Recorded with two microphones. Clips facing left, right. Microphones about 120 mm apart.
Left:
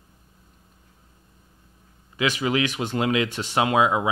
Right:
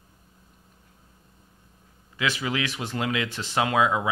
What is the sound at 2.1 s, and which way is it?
Speech, 15° left (ahead or behind).